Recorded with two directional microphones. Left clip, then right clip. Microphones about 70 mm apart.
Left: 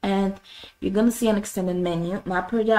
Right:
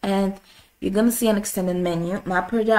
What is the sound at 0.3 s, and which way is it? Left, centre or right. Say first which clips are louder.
A woman's voice: even; centre.